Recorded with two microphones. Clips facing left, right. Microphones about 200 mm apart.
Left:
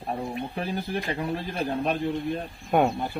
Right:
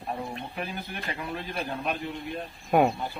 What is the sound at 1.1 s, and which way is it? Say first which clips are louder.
Speech: left 4 dB; 30° left (ahead or behind).